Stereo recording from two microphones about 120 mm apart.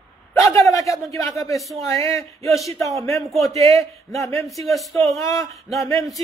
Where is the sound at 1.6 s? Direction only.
Centre (ahead or behind).